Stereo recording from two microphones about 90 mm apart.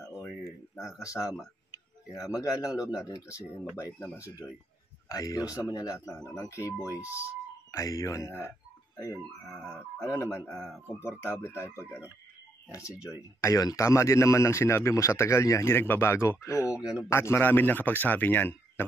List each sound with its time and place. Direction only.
1.0 s speech: 35° left (ahead or behind)
2.3 s speech: 40° left (ahead or behind)
5.0 s speech: 40° left (ahead or behind)
12.9 s speech: 15° right (ahead or behind)
13.4 s speech: 40° left (ahead or behind)
16.7 s speech: 10° right (ahead or behind)
17.1 s speech: 30° left (ahead or behind)